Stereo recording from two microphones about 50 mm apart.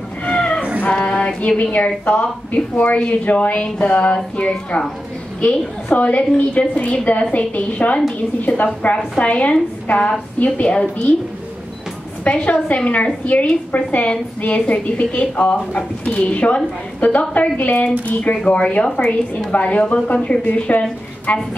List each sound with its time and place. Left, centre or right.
0.2 s a sound: left
2.0 s a woman's voice: left
12.3 s a woman's voice: left